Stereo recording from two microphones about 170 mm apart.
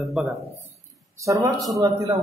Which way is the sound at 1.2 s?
20° right (ahead or behind).